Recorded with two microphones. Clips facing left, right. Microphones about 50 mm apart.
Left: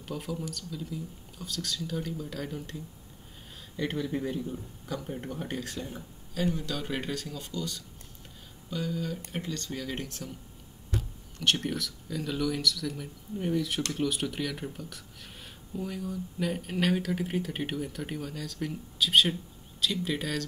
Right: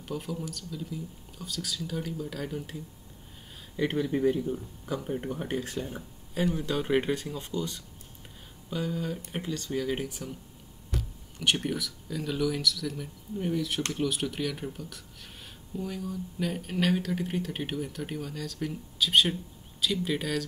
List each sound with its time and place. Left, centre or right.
0.0 s speech: centre
3.7 s speech: centre
11.3 s speech: centre